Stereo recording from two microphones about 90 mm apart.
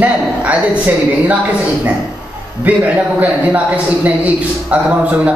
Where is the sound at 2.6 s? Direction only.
15° right (ahead or behind).